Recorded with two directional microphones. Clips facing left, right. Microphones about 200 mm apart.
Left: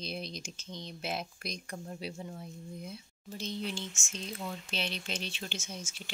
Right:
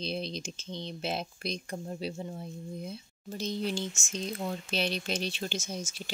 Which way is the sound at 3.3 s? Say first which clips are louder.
Right 5 dB; 40° right (ahead or behind).